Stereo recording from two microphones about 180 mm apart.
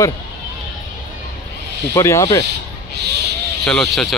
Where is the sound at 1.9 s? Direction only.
15° left (ahead or behind).